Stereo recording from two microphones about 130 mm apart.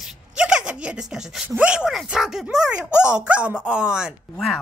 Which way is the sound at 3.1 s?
10° right (ahead or behind).